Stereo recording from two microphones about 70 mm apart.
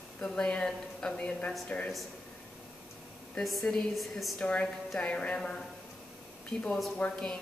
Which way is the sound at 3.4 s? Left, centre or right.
Centre.